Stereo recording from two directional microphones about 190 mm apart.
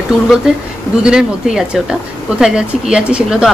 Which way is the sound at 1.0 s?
5° right (ahead or behind).